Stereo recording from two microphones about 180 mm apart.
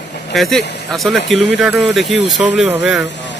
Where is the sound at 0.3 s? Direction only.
Centre (ahead or behind).